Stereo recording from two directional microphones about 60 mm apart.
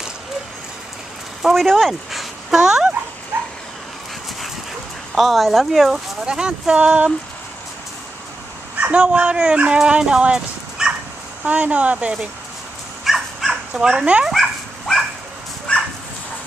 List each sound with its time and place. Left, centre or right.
1.4 s speech: centre
3.3 s dog: right
5.1 s speech: centre
6.2 s speech: centre
8.7 s speech: right
13.0 s dog: centre
13.7 s speech: centre
14.3 s dog: centre